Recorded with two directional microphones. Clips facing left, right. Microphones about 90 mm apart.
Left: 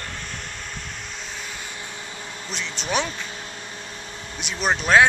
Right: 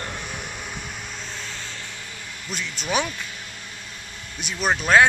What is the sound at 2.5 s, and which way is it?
Speech, 5° right (ahead or behind).